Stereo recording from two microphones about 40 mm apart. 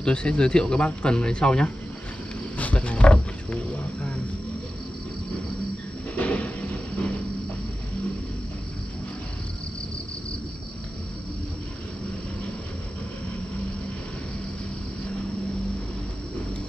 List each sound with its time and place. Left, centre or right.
0.0 s speech: left
2.5 s roaring cats: left
3.7 s speech: left
6.1 s a sound: left